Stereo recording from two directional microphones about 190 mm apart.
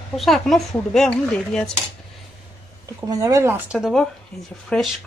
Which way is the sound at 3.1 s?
15° right (ahead or behind).